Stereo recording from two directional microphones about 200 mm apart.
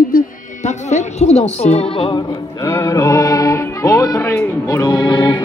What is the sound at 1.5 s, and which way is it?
Music, 30° left (ahead or behind).